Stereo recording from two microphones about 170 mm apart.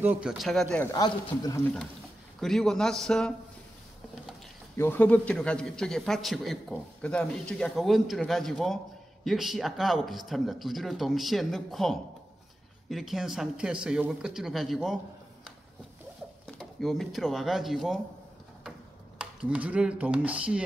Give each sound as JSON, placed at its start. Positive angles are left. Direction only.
{"t": 0.0, "sound": "a man's voice", "side_deg": -10}
{"t": 0.9, "sound": "a man's voice", "side_deg": 20}
{"t": 2.4, "sound": "a man's voice", "side_deg": 5}
{"t": 4.7, "sound": "a man's voice", "side_deg": 10}
{"t": 16.5, "sound": "a man's voice", "side_deg": 0}
{"t": 19.1, "sound": "speech", "side_deg": -5}